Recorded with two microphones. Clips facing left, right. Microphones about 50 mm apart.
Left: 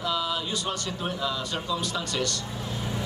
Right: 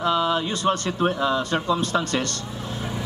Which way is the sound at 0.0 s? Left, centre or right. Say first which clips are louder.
Right 7 dB; right.